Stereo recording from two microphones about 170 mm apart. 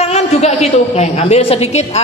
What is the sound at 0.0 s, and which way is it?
A man's voice, 40° left (ahead or behind).